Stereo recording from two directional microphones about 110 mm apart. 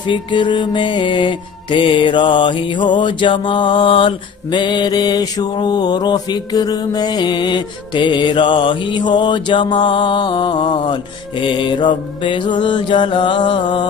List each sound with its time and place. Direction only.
0.0 s music: 45° left (ahead or behind)